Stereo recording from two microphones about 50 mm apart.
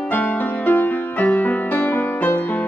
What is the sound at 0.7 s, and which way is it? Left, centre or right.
Music, left.